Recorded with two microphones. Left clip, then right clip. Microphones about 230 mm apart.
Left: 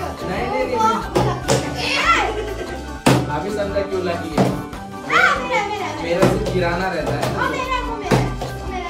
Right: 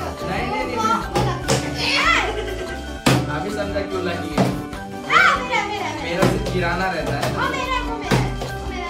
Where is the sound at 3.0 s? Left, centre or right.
Centre.